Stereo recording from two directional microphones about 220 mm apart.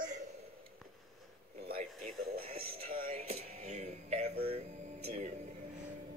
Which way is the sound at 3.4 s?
30° right (ahead or behind).